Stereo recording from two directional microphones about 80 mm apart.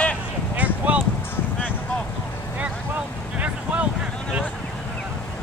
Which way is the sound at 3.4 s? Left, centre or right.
Centre.